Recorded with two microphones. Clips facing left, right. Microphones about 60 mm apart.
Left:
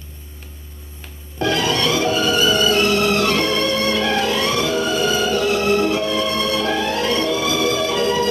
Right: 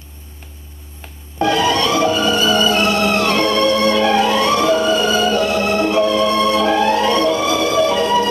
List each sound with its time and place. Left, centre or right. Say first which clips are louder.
1.4 s music: right 4 dB; right